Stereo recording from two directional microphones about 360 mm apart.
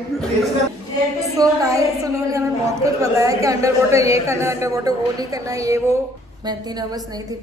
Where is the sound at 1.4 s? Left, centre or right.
Centre.